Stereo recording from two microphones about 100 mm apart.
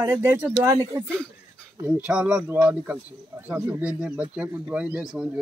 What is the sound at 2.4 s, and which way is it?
Speech, 20° right (ahead or behind).